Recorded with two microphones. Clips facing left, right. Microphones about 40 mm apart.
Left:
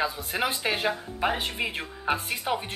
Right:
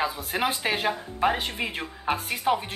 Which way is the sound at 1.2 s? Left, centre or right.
Centre.